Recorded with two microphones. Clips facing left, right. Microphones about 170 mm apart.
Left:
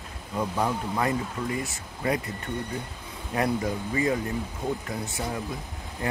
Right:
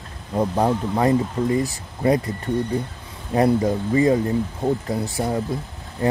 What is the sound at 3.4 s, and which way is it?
Speech, 35° right (ahead or behind).